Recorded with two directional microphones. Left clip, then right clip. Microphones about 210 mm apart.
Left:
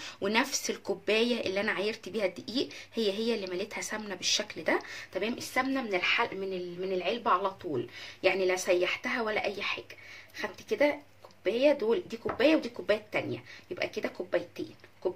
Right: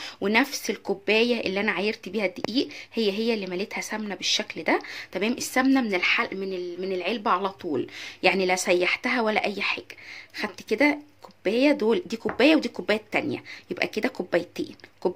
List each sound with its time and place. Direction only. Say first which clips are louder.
0.0 s speech: right 6 dB; 25° right (ahead or behind); by 14.7 s 50° right (ahead or behind)